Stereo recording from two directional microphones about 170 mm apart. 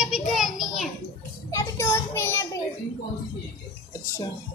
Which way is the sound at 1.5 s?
15° left (ahead or behind).